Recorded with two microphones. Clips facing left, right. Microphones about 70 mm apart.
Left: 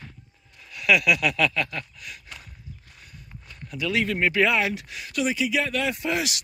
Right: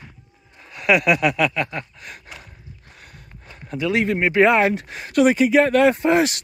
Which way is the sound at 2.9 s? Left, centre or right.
Right.